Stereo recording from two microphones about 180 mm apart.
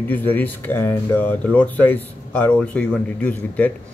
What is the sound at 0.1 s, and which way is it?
Speech, 10° left (ahead or behind).